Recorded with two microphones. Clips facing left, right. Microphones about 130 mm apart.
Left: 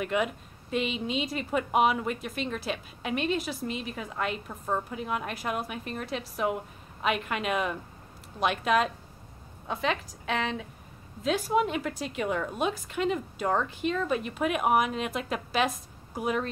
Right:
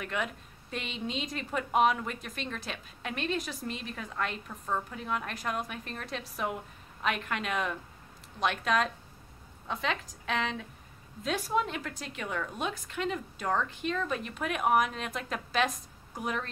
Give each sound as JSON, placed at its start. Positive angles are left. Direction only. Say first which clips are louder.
{"t": 0.0, "sound": "a woman's voice", "louder": "left 6 dB", "side_deg": 10}
{"t": 4.5, "sound": "a woman's voice", "louder": "left 3 dB", "side_deg": 20}